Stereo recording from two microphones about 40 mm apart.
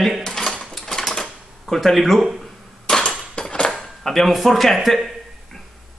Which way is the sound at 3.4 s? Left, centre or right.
Left.